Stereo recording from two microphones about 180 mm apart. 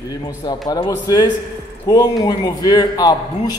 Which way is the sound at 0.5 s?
20° left (ahead or behind).